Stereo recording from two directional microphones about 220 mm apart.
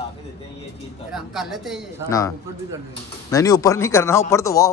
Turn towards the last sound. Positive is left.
turn(degrees=15)  # may be behind; listen again after turning